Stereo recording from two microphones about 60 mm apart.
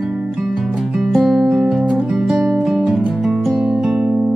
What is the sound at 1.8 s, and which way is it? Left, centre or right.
Music, centre.